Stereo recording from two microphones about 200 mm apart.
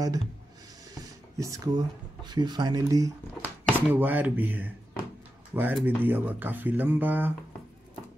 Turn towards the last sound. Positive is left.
turn(degrees=-10)  # may be behind; listen again after turning